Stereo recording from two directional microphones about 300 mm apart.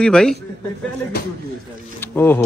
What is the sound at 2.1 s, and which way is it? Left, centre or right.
Speech, centre.